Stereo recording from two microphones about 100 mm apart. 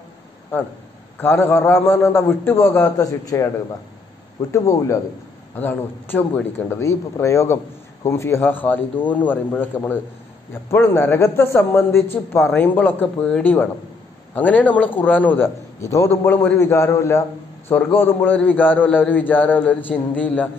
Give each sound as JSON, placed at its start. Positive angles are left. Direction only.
{"t": 1.2, "sound": "a man's voice", "side_deg": 25}
{"t": 3.0, "sound": "speech", "side_deg": 35}
{"t": 4.5, "sound": "speech", "side_deg": 35}
{"t": 5.6, "sound": "a man's voice", "side_deg": 20}
{"t": 17.9, "sound": "a man's voice", "side_deg": 20}